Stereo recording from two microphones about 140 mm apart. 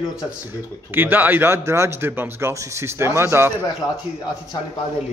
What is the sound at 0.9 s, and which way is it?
Speech, 15° right (ahead or behind).